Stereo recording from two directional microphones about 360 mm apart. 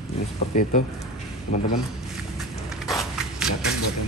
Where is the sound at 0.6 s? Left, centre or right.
Left.